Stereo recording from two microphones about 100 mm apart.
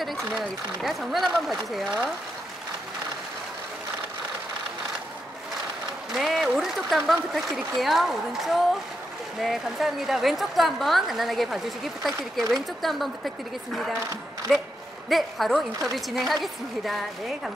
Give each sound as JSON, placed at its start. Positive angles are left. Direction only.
{"t": 0.0, "sound": "a woman's voice", "side_deg": 0}
{"t": 6.1, "sound": "a woman's voice", "side_deg": 0}
{"t": 14.5, "sound": "a woman's voice", "side_deg": 0}